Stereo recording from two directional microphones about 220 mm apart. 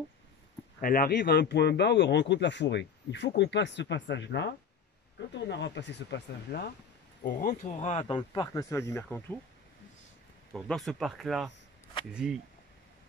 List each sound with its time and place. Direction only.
0.7 s a man's voice: 40° left (ahead or behind)
7.2 s speech: 35° left (ahead or behind); by 9.2 s 10° left (ahead or behind)
10.5 s speech: centre (ahead or behind)